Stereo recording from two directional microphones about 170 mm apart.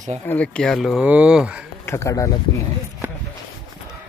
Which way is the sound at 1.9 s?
15° left (ahead or behind).